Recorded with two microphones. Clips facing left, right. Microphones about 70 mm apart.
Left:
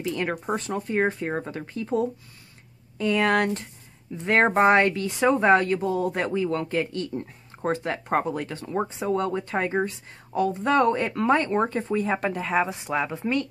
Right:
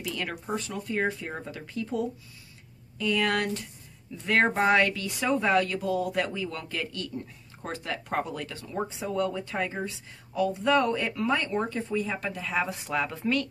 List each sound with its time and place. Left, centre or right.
0.0 s speech: left
12.5 s speech: left